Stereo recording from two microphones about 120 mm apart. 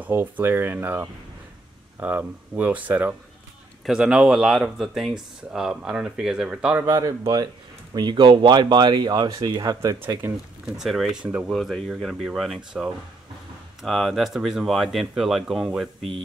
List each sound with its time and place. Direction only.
0.0 s speech: 15° right (ahead or behind)
6.9 s speech: 30° right (ahead or behind)
10.8 s speech: centre (ahead or behind)
11.5 s speech: 5° left (ahead or behind)
16.0 s speech: 50° right (ahead or behind)